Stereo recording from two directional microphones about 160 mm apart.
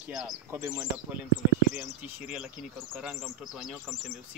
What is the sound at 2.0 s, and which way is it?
Speech, 10° right (ahead or behind).